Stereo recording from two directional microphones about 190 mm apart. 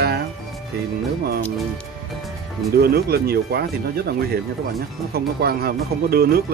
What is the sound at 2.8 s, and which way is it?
Speech, 55° right (ahead or behind).